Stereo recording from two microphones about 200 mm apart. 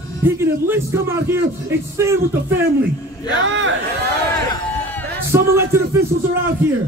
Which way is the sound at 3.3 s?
70° right (ahead or behind).